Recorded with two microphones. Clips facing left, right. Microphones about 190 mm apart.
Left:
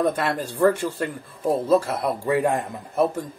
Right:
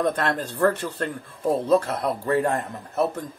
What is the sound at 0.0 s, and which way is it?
Speech, 10° left (ahead or behind).